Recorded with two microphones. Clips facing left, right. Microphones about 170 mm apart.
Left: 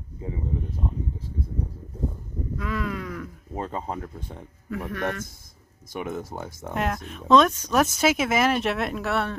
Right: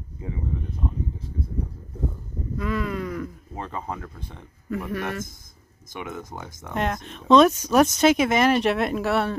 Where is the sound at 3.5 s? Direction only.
30° left (ahead or behind).